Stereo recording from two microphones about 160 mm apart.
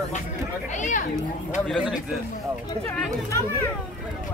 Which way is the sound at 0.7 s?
50° left (ahead or behind).